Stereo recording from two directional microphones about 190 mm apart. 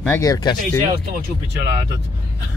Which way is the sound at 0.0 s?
10° left (ahead or behind).